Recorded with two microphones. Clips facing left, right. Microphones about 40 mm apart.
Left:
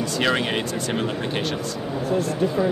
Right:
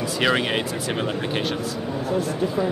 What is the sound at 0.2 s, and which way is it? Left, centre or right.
Speech, centre.